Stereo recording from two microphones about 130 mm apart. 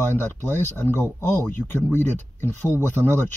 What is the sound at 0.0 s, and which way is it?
Speech, 15° left (ahead or behind).